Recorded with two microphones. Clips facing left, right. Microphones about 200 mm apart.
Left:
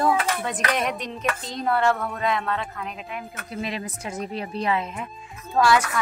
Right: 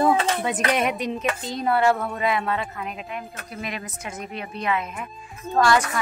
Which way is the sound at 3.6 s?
30° left (ahead or behind).